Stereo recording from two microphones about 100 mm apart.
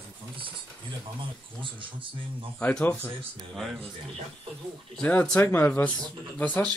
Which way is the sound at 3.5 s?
5° left (ahead or behind).